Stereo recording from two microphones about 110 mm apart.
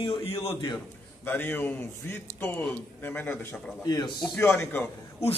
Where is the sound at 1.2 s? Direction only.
15° left (ahead or behind).